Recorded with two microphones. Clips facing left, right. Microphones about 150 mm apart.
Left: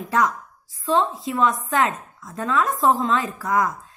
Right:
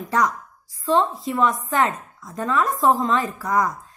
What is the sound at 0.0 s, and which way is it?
A woman's voice, centre (ahead or behind).